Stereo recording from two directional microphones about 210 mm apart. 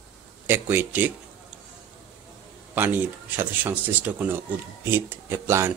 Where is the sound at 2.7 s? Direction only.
10° right (ahead or behind).